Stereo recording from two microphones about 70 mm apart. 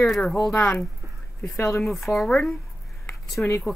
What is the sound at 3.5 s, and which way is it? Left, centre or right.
Speech, left.